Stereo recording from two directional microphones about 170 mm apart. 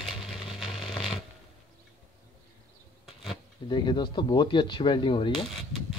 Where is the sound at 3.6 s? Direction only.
25° left (ahead or behind).